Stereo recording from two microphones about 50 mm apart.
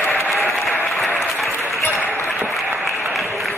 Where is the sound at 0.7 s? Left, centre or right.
Centre.